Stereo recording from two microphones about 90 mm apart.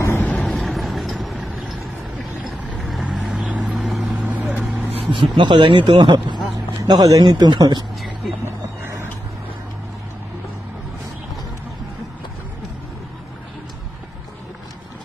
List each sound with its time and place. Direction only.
0.2 s vehicle: 15° left (ahead or behind)
0.5 s vehicle: centre (ahead or behind)
2.8 s vehicle: centre (ahead or behind)
3.7 s vehicle: centre (ahead or behind)
4.2 s vehicle: 20° right (ahead or behind)
4.9 s speech: 80° right; by 6.3 s 60° right (ahead or behind)
6.8 s speech: 45° right (ahead or behind)